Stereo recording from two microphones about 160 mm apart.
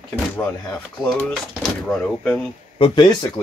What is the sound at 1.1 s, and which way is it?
Speech, centre (ahead or behind).